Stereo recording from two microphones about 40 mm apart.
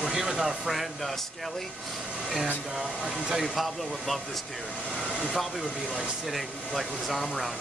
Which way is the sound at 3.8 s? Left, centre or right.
Centre.